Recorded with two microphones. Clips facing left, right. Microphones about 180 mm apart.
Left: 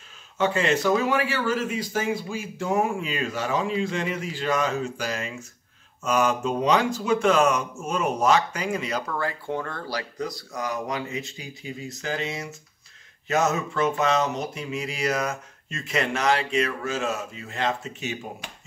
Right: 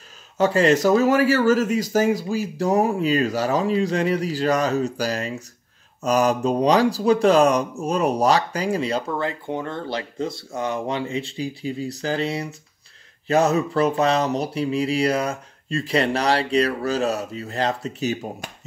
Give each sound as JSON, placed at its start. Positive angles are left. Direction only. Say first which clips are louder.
{"t": 0.4, "sound": "speech", "louder": "right 6 dB", "side_deg": -40}